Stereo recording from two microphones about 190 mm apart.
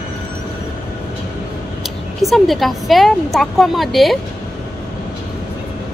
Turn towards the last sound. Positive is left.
turn(degrees=0)  # may be behind; listen again after turning